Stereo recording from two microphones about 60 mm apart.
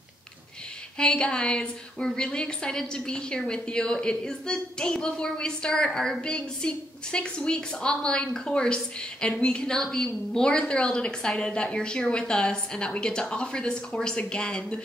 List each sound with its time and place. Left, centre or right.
0.9 s a woman's voice: centre